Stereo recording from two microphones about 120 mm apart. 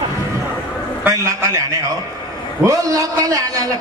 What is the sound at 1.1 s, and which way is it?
A man's voice, 25° right (ahead or behind).